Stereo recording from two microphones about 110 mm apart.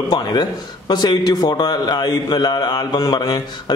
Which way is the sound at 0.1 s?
40° left (ahead or behind).